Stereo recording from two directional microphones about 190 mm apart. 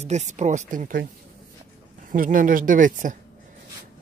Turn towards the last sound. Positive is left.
turn(degrees=-45)  # may be behind; listen again after turning